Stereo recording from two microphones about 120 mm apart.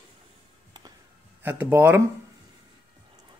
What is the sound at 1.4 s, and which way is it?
Speech, 15° right (ahead or behind).